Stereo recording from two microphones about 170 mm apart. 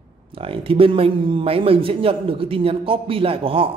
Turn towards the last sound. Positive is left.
turn(degrees=-35)  # may be behind; listen again after turning